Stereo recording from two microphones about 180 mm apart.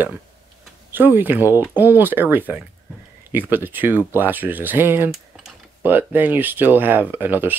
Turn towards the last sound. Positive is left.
turn(degrees=-10)  # may be behind; listen again after turning